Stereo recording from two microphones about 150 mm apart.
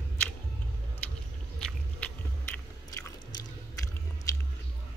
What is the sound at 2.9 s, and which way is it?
Chewing, 20° left (ahead or behind).